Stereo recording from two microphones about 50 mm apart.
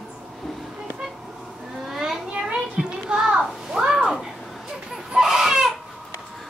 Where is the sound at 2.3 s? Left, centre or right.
Centre.